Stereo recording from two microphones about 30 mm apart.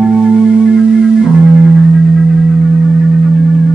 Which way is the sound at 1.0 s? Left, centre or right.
Centre.